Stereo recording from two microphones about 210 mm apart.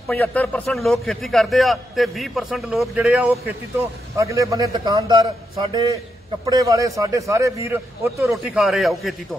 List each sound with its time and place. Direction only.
0.1 s a man's voice: 10° left (ahead or behind)
4.2 s a man's voice: 15° right (ahead or behind)
8.3 s a man's voice: centre (ahead or behind)